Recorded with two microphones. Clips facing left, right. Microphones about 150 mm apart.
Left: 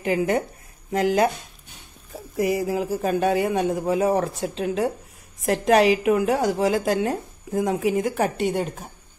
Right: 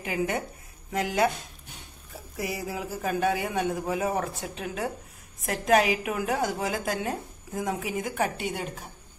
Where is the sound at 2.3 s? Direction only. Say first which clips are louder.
Left 10 dB; 50° left (ahead or behind).